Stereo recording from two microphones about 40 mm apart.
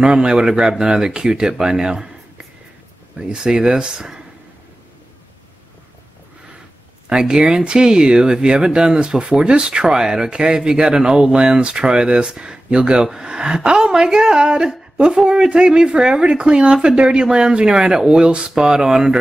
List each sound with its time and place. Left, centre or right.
0.0 s speech: right
7.1 s speech: centre